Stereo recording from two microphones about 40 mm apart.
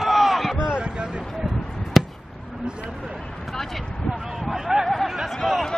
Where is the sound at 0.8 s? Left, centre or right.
Right.